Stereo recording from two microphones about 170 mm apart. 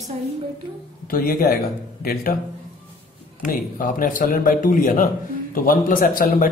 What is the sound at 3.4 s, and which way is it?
A man's voice, 55° left (ahead or behind).